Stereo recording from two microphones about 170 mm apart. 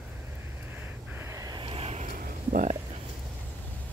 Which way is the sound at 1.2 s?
20° right (ahead or behind).